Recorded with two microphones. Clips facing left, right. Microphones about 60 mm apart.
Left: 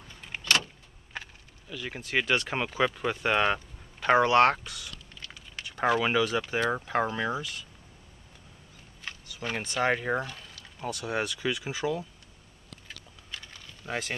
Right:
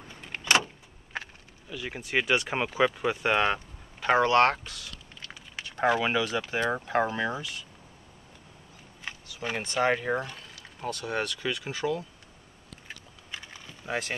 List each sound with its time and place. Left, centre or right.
0.4 s vehicle: centre
1.1 s speech: centre
4.2 s speech: centre
5.2 s a sound: centre
6.2 s speech: centre
9.0 s a sound: centre
9.8 s speech: centre
10.2 s boiling: centre
10.9 s speech: centre
12.8 s vehicle: centre